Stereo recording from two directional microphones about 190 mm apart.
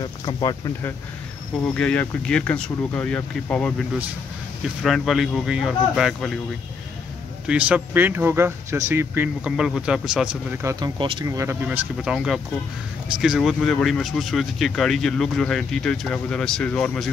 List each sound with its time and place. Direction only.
0.0 s speech: 20° left (ahead or behind)
1.7 s speech: 5° left (ahead or behind)
4.8 s speech: centre (ahead or behind)
7.4 s speech: 5° right (ahead or behind)
10.6 s speech: 20° right (ahead or behind)
13.2 s speech: centre (ahead or behind)